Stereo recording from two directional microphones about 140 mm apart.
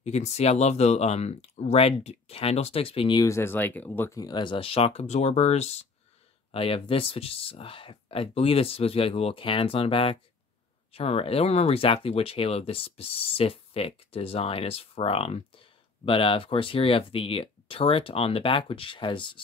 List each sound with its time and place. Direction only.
0.0 s speech: 50° left (ahead or behind); by 3.3 s 35° left (ahead or behind)
3.3 s speech: 20° left (ahead or behind)
4.2 s speech: 30° left (ahead or behind); by 5.8 s 50° left (ahead or behind)
6.5 s speech: 40° left (ahead or behind)